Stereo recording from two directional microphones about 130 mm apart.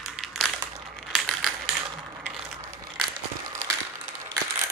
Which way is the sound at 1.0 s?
5° left (ahead or behind).